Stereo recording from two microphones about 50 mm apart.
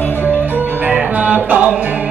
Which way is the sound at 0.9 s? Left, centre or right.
Right.